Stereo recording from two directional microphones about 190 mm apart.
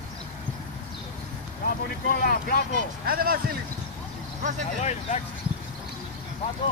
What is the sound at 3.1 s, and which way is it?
Speech, 50° right (ahead or behind).